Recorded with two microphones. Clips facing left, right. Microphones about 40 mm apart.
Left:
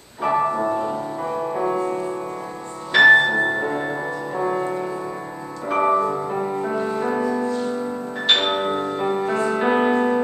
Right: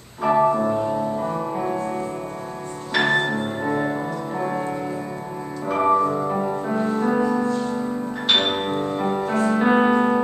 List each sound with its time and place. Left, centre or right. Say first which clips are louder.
0.2 s music: right 2 dB; centre
3.0 s music: left 8 dB; left
3.6 s music: right 1 dB; centre
7.2 s music: right 1 dB; centre